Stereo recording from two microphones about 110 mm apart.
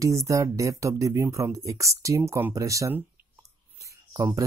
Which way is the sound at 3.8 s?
30° right (ahead or behind).